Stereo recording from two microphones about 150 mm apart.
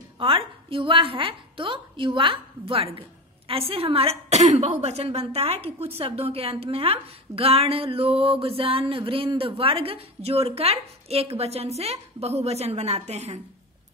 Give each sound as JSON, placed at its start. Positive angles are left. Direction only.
{"t": 0.2, "sound": "a woman's voice", "side_deg": -35}